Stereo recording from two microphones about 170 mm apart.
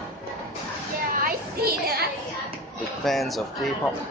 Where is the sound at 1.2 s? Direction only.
65° right (ahead or behind).